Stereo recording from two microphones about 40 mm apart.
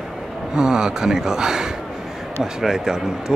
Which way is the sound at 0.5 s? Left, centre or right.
Centre.